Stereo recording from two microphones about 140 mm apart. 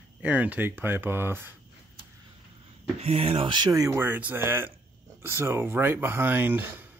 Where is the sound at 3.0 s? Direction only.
45° right (ahead or behind).